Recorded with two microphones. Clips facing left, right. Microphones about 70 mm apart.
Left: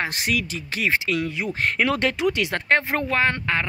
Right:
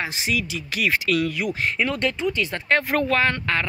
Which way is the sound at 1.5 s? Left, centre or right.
Left.